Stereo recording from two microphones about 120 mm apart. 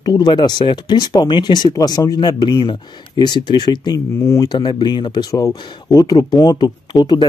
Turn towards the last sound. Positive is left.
turn(degrees=35)  # may be behind; listen again after turning